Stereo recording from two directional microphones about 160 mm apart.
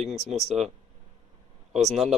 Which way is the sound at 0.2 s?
Centre (ahead or behind).